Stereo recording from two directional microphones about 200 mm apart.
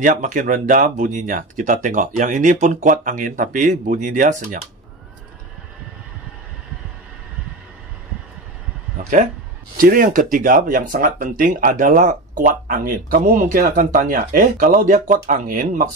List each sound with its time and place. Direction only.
0.0 s speech: 40° right (ahead or behind)
9.0 s speech: 35° right (ahead or behind)